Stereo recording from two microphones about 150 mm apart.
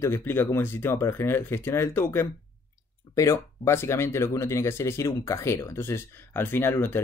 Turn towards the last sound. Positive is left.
turn(degrees=15)  # may be behind; listen again after turning